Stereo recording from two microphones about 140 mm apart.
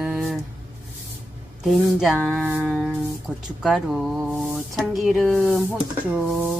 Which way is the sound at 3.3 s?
5° right (ahead or behind).